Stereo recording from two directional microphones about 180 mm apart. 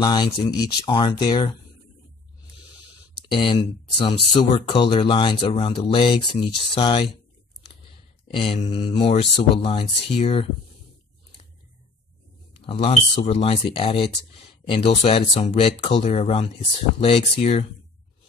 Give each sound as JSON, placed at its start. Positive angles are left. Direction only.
{"t": 0.0, "sound": "speech", "side_deg": 25}
{"t": 3.3, "sound": "speech", "side_deg": 25}
{"t": 8.3, "sound": "speech", "side_deg": 30}
{"t": 12.6, "sound": "speech", "side_deg": 30}